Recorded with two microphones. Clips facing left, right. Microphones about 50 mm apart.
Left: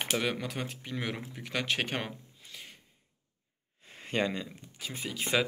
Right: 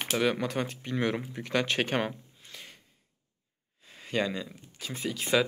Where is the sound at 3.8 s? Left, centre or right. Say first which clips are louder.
Right 1 dB; left.